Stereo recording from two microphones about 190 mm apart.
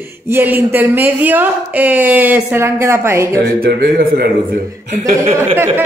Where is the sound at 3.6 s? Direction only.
55° right (ahead or behind).